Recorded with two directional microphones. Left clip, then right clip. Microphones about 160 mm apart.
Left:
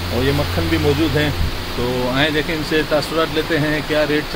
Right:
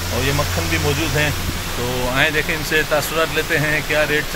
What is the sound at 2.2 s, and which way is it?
Speech, 5° left (ahead or behind).